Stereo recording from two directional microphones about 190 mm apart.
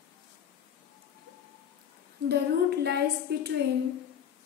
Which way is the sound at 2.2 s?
60° right (ahead or behind).